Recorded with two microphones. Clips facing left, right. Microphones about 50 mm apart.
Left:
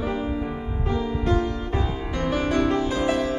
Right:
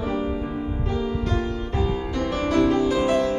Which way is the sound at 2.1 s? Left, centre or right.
Centre.